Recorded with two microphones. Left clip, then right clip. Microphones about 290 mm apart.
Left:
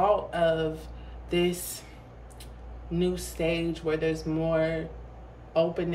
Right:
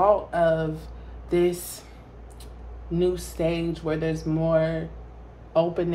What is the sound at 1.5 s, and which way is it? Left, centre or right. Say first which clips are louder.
Speech: right 3 dB; centre.